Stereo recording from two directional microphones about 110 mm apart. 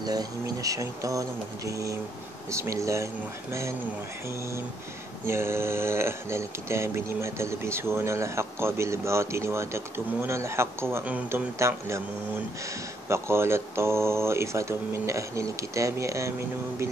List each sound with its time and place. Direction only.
0.0 s speech: 35° right (ahead or behind)
5.2 s speech: 25° right (ahead or behind)
13.1 s speech: 25° right (ahead or behind)